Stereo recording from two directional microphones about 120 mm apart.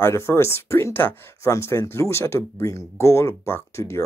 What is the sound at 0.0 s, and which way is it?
Speech, 20° left (ahead or behind).